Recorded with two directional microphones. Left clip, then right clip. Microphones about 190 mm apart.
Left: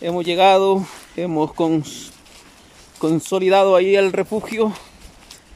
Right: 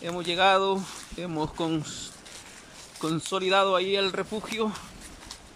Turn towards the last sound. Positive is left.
turn(degrees=30)  # may be behind; listen again after turning